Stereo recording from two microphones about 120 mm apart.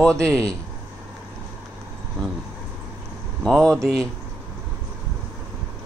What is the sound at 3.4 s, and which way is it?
Speech, 5° left (ahead or behind).